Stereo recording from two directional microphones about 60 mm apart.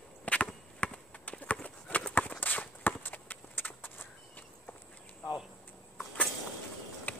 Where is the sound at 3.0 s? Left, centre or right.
Left.